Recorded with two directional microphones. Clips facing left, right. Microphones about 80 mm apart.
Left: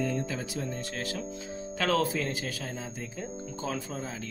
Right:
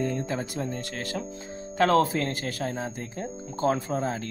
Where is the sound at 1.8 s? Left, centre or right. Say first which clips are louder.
Right 6 dB; right.